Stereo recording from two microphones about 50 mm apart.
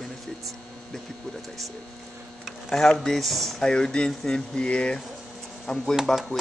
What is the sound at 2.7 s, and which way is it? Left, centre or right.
Speech, centre.